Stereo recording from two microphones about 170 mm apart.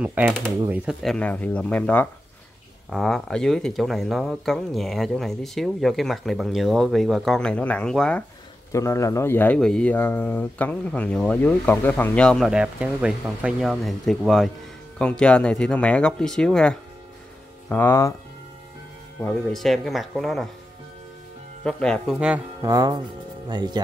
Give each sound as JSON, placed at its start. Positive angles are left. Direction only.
{"t": 0.0, "sound": "speech", "side_deg": -10}
{"t": 0.3, "sound": "speech", "side_deg": 5}
{"t": 1.1, "sound": "speech", "side_deg": 10}
{"t": 8.7, "sound": "speech", "side_deg": 15}
{"t": 19.2, "sound": "speech", "side_deg": 0}
{"t": 21.6, "sound": "speech", "side_deg": 5}
{"t": 22.6, "sound": "speech", "side_deg": -20}